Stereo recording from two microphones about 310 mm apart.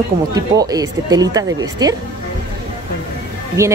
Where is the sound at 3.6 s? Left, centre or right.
Centre.